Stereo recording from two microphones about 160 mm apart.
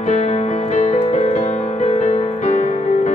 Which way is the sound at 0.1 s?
45° left (ahead or behind).